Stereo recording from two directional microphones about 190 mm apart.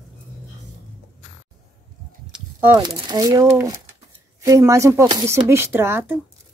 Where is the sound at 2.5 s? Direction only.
20° right (ahead or behind).